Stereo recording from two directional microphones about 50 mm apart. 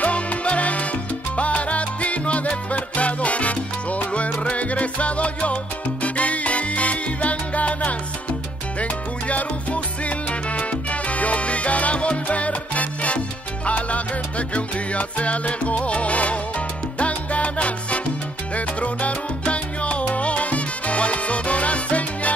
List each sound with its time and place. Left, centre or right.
0.0 s music: left
1.3 s salsa music: left